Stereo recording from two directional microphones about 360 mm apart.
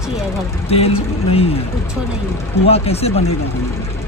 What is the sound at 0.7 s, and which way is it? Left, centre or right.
Speech, centre.